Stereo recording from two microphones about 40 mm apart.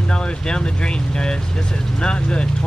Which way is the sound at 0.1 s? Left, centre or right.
Left.